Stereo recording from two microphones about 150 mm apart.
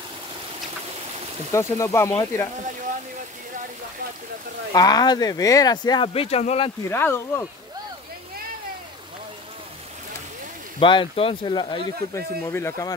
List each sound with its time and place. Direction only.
1.5 s speech: 20° left (ahead or behind)
4.7 s speech: 25° left (ahead or behind); by 6.7 s 45° left (ahead or behind)
6.8 s speech: 15° left (ahead or behind)
10.8 s speech: 35° left (ahead or behind)
12.4 s speech: 20° left (ahead or behind)